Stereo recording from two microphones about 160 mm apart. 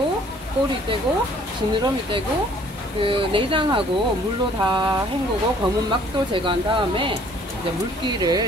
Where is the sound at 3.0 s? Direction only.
35° right (ahead or behind).